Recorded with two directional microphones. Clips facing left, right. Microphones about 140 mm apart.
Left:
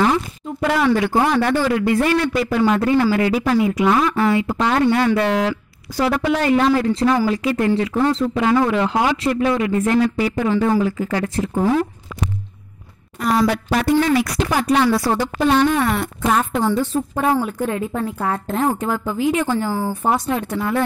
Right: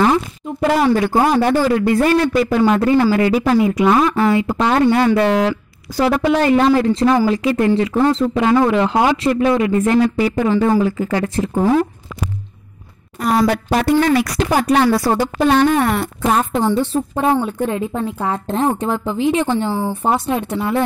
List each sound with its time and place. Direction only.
0.0 s a sound: 45° right (ahead or behind)
1.5 s speech: 40° right (ahead or behind)
13.2 s speech: 45° right (ahead or behind)
13.8 s speech: 55° right (ahead or behind)
16.0 s speech: 25° right (ahead or behind)